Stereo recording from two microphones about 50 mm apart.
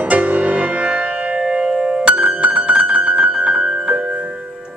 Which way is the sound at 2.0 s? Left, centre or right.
Right.